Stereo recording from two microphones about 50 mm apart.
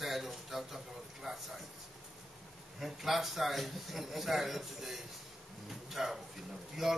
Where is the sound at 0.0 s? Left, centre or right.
Centre.